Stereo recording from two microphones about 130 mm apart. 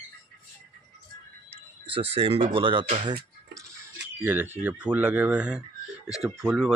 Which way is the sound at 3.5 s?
25° right (ahead or behind).